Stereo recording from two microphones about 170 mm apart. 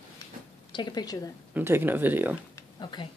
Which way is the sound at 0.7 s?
25° left (ahead or behind).